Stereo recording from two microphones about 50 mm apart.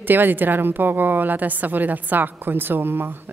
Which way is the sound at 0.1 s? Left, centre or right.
Right.